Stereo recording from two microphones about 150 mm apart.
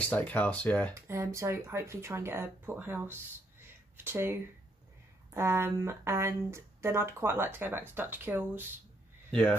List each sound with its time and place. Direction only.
0.1 s speech: 10° left (ahead or behind)
0.9 s speech: 20° right (ahead or behind)
9.3 s speech: 10° left (ahead or behind)